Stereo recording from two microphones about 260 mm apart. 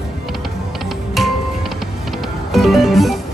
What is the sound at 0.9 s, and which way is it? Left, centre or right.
Music, centre.